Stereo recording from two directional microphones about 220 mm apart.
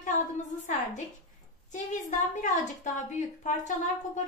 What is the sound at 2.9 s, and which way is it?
A woman's voice, 35° left (ahead or behind).